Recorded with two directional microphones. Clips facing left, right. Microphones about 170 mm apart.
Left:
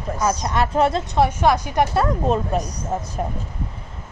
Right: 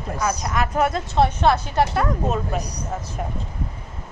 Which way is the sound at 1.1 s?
10° left (ahead or behind).